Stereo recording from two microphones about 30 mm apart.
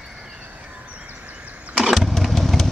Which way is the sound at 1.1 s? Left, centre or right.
Right.